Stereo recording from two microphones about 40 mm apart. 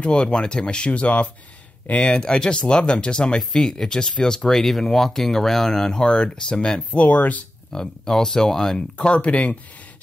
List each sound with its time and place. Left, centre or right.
0.0 s speech: left
6.9 s speech: left
7.7 s speech: centre
8.7 s speech: left